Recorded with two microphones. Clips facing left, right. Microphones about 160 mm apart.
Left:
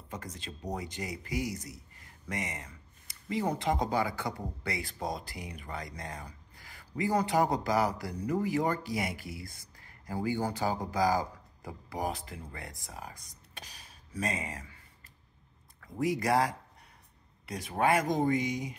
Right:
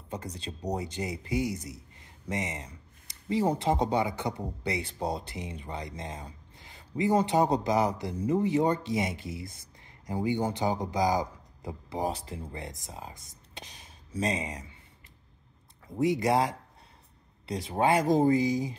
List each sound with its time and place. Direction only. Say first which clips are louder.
0.1 s speech: right 5 dB; 30° right (ahead or behind)
13.6 s a sound: right 3 dB; 25° right (ahead or behind)
15.8 s speech: right 4 dB; 25° right (ahead or behind)